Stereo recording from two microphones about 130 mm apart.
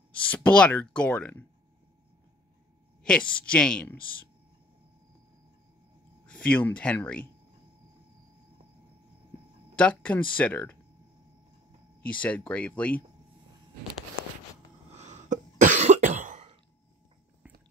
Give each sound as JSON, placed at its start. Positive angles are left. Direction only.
{"t": 0.3, "sound": "speech", "side_deg": 10}
{"t": 3.0, "sound": "speech", "side_deg": 10}
{"t": 6.2, "sound": "speech", "side_deg": 10}
{"t": 9.8, "sound": "speech", "side_deg": 10}
{"t": 12.0, "sound": "speech", "side_deg": 10}
{"t": 15.0, "sound": "cough", "side_deg": -65}